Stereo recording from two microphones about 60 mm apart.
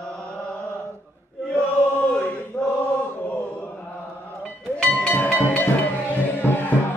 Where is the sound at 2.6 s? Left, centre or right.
Left.